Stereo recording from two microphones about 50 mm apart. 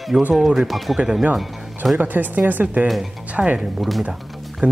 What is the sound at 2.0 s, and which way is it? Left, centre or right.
Speech, right.